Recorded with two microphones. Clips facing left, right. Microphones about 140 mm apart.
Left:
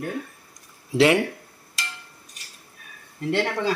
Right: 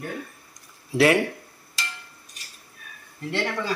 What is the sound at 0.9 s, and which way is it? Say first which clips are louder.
Speech: left 1 dB; 20° left (ahead or behind).